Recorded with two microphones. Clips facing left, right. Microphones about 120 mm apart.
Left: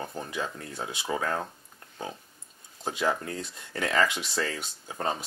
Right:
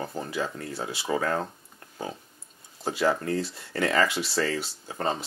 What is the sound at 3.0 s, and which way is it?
Speech, 20° left (ahead or behind).